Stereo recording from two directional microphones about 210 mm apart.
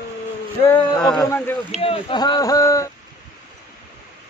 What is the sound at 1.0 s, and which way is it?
Speech, 5° left (ahead or behind).